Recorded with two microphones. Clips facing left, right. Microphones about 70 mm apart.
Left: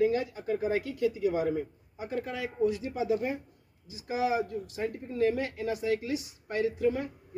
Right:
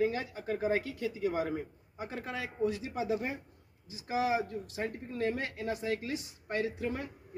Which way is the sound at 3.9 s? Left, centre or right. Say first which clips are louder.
Left 2 dB; right.